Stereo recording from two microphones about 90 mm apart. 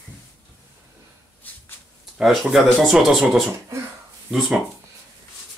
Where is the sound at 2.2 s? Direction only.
Centre (ahead or behind).